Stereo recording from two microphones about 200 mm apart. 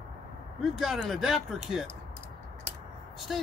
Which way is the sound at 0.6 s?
Centre (ahead or behind).